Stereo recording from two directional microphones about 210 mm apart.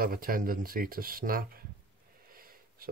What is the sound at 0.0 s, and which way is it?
Speech, 45° right (ahead or behind).